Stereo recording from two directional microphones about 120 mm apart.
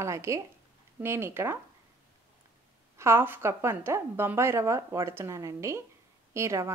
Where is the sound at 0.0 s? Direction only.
25° right (ahead or behind).